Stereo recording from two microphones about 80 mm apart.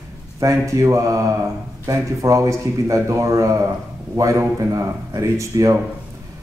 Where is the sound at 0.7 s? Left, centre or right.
Right.